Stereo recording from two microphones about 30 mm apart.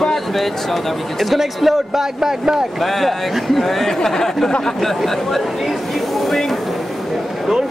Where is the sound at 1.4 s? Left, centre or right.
Centre.